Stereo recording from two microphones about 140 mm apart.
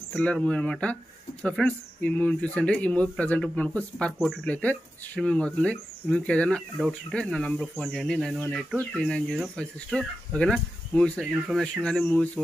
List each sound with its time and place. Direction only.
0.1 s speech: 10° left (ahead or behind)